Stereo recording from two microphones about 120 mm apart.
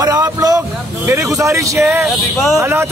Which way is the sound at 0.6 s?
20° right (ahead or behind).